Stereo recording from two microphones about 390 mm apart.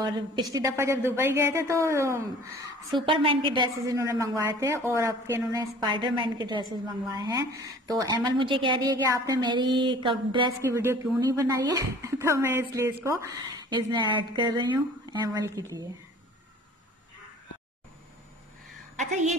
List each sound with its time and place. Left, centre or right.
0.0 s a woman's voice: centre
18.9 s a woman's voice: centre